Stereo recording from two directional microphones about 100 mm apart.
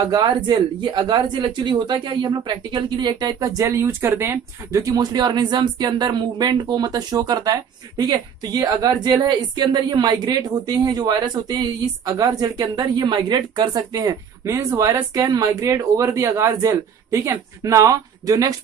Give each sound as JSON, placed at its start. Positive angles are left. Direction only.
{"t": 0.1, "sound": "speech", "side_deg": -50}
{"t": 13.9, "sound": "speech", "side_deg": -35}